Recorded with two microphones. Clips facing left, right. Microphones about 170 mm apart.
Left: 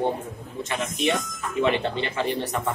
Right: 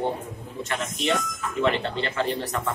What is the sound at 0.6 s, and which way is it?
Speech, 15° left (ahead or behind).